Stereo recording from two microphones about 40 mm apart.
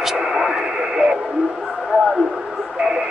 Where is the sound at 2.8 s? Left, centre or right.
Right.